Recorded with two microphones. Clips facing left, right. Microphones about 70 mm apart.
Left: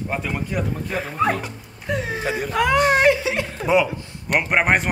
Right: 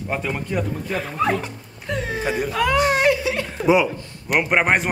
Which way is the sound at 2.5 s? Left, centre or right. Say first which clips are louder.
Left 3 dB; left.